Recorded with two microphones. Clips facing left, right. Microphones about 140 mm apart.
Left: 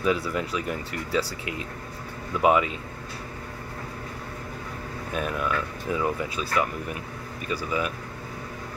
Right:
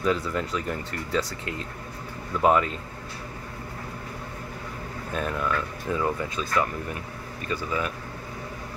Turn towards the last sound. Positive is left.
turn(degrees=15)  # may be behind; listen again after turning